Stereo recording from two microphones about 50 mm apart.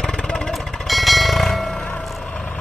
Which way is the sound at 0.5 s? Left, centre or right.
Centre.